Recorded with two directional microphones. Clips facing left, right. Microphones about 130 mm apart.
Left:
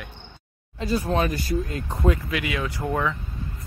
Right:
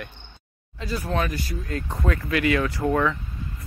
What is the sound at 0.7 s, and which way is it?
Speech, 25° left (ahead or behind).